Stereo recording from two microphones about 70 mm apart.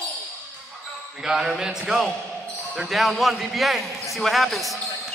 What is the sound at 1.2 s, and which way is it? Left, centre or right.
A man's voice, centre.